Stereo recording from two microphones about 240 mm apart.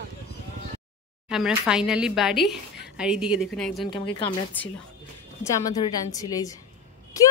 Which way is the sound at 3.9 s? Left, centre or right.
Centre.